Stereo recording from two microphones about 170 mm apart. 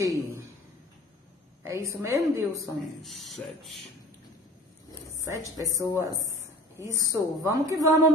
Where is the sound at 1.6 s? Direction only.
15° right (ahead or behind).